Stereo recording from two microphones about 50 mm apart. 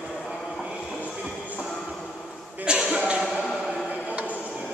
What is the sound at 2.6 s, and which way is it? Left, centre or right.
Cough, centre.